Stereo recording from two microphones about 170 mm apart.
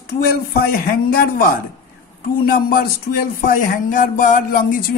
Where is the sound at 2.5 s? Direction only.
55° left (ahead or behind).